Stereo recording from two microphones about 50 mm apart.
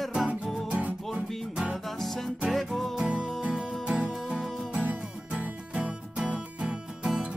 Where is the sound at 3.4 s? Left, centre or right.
Centre.